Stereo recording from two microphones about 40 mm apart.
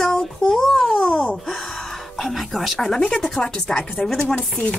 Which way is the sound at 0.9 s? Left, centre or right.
Left.